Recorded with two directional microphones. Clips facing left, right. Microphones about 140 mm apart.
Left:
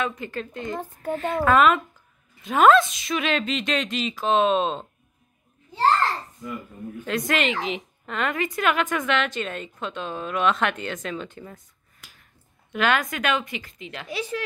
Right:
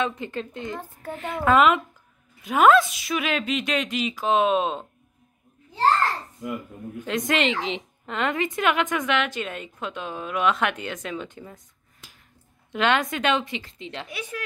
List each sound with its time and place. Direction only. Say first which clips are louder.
0.0 s a woman's voice: right 1 dB; 20° right (ahead or behind)
7.1 s a woman's voice: right 1 dB; 20° right (ahead or behind)
12.7 s a woman's voice: right 1 dB; 25° right (ahead or behind)
14.0 s speech: left 10 dB; 30° left (ahead or behind)